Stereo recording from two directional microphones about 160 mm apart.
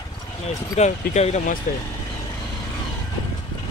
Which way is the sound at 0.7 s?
45° left (ahead or behind).